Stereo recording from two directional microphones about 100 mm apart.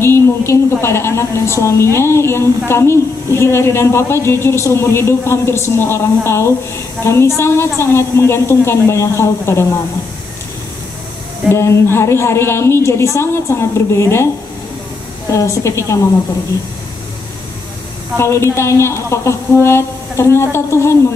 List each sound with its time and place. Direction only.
0.0 s a woman's voice: 25° left (ahead or behind)
11.5 s a woman's voice: 25° left (ahead or behind)
15.3 s a woman's voice: 30° left (ahead or behind)
18.1 s a woman's voice: 30° left (ahead or behind)